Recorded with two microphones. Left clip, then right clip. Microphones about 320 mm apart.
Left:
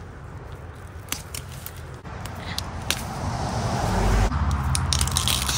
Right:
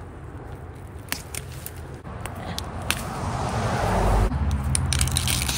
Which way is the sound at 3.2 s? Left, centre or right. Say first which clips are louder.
Right 1 dB; right.